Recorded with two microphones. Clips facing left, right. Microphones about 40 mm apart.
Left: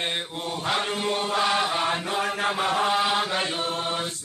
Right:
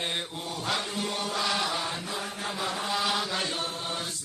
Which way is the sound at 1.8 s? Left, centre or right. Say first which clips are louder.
Left 8 dB; left.